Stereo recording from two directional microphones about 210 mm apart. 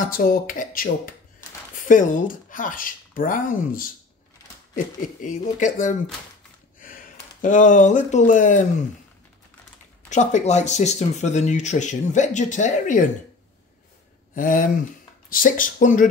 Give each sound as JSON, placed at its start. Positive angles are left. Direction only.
{"t": 0.0, "sound": "speech", "side_deg": 40}
{"t": 5.2, "sound": "speech", "side_deg": 35}
{"t": 10.0, "sound": "speech", "side_deg": 35}
{"t": 14.3, "sound": "speech", "side_deg": 40}